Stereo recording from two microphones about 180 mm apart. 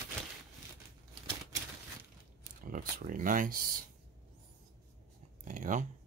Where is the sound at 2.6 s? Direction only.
50° right (ahead or behind).